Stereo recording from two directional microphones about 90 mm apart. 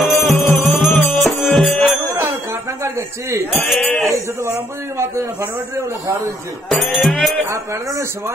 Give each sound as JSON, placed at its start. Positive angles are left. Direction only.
{"t": 0.0, "sound": "music", "side_deg": 0}
{"t": 0.8, "sound": "music", "side_deg": 25}
{"t": 1.2, "sound": "music", "side_deg": 0}
{"t": 2.8, "sound": "a sound", "side_deg": -35}
{"t": 3.5, "sound": "speech", "side_deg": 0}
{"t": 4.0, "sound": "a man's voice", "side_deg": -30}
{"t": 6.7, "sound": "speech", "side_deg": 0}